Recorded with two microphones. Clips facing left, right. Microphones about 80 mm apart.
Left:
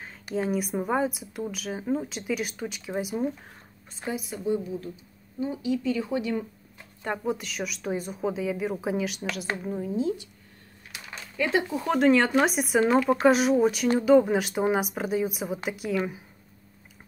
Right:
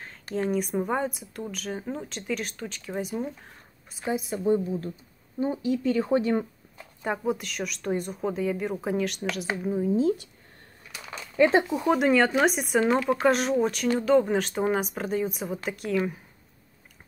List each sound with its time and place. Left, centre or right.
0.2 s speech: centre
4.0 s a woman's voice: right
7.0 s speech: centre
9.9 s speech: right
11.3 s speech: right
11.7 s speech: centre